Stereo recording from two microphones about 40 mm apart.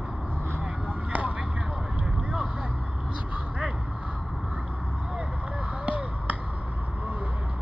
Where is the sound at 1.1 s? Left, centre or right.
Right.